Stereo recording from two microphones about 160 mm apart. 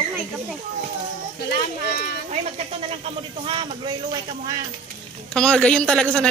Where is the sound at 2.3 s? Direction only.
40° right (ahead or behind).